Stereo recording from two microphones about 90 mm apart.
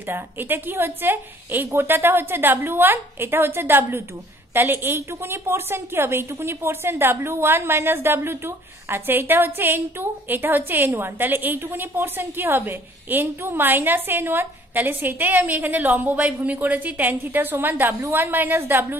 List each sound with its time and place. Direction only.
0.1 s a woman's voice: 25° right (ahead or behind)